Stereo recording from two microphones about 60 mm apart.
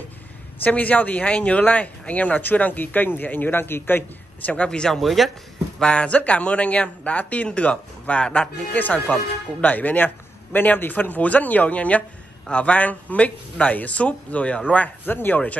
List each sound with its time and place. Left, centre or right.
0.7 s speech: left
4.5 s speech: centre
5.8 s speech: centre